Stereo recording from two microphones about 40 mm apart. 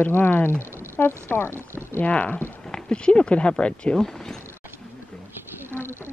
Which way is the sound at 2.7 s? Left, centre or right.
Left.